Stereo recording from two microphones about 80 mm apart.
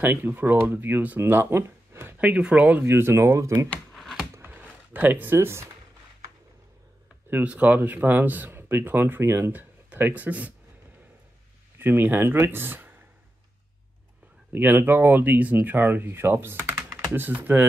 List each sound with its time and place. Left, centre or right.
0.0 s speech: right
2.1 s speech: centre
2.8 s speech: right
3.9 s a sound: centre
4.4 s a sound: right
7.2 s speech: right
11.8 s speech: right
14.5 s speech: right